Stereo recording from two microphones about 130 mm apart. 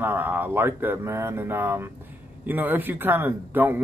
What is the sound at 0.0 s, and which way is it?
A man's voice, 15° right (ahead or behind).